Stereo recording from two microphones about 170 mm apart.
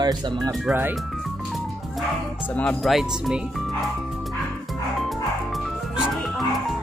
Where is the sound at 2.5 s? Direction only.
5° left (ahead or behind).